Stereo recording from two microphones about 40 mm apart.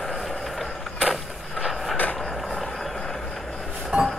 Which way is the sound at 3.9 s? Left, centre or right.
Right.